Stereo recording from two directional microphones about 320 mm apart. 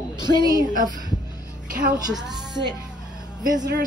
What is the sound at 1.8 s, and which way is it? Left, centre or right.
Speech, centre.